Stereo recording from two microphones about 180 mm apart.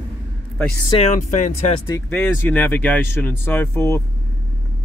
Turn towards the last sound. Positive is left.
turn(degrees=15)  # may be behind; listen again after turning